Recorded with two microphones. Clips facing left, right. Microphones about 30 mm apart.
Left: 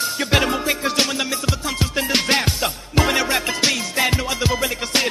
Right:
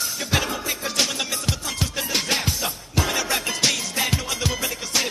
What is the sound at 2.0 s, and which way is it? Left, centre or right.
Music, left.